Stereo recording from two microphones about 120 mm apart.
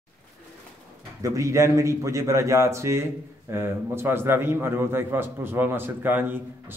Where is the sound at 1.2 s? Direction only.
25° right (ahead or behind).